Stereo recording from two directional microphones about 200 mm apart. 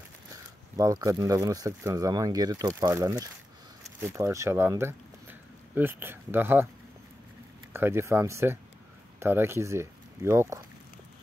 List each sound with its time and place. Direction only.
0.7 s speech: 15° right (ahead or behind)
7.7 s speech: 10° right (ahead or behind)